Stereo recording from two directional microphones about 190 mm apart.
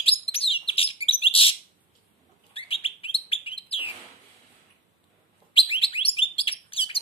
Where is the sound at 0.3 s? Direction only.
30° left (ahead or behind).